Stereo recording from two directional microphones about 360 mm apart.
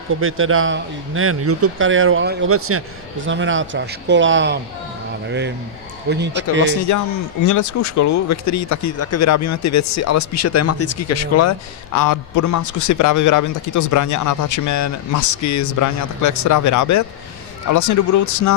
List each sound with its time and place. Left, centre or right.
0.1 s speech: right
6.0 s a man's voice: right
6.9 s a man's voice: left
11.9 s a man's voice: left